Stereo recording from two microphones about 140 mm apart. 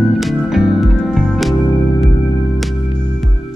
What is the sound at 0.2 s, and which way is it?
Music, centre (ahead or behind).